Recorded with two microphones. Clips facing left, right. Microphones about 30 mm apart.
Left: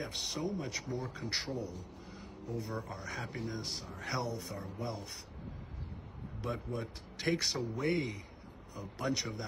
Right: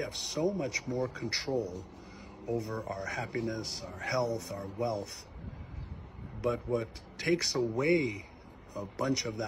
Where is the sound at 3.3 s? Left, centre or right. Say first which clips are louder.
Right 6 dB; right.